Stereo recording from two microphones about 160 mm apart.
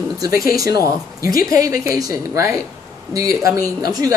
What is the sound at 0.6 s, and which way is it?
A woman's voice, 20° right (ahead or behind).